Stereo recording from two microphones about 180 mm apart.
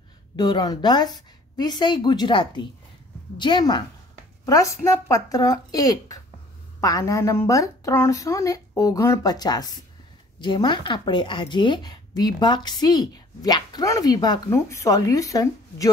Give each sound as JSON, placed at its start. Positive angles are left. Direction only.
{"t": 0.4, "sound": "speech", "side_deg": 25}